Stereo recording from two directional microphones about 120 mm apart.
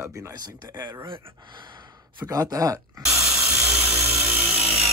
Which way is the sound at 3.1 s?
5° right (ahead or behind).